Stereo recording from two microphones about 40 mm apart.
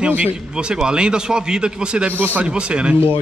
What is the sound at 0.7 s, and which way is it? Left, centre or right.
A man's voice, right.